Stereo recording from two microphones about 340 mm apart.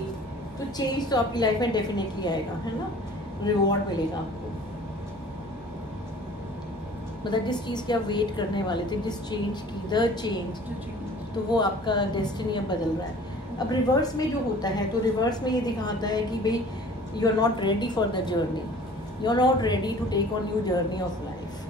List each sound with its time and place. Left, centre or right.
0.7 s a woman's voice: centre
3.4 s a woman's voice: centre
7.2 s a woman's voice: centre
11.5 s a woman's voice: centre